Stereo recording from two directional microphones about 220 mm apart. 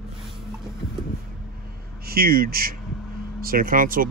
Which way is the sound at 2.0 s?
45° right (ahead or behind).